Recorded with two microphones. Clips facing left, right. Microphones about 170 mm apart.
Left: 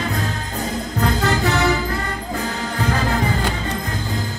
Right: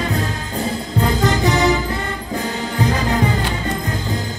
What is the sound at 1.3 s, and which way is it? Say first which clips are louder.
Music: right 3 dB; 15° right (ahead or behind).